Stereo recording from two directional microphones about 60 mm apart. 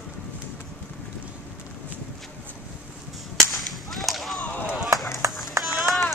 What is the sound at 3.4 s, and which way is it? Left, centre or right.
Whip, centre.